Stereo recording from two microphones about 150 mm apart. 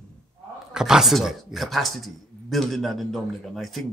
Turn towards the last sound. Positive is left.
turn(degrees=0)  # may be behind; listen again after turning